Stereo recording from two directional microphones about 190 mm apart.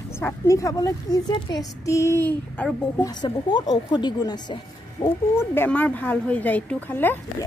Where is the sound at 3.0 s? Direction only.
20° left (ahead or behind).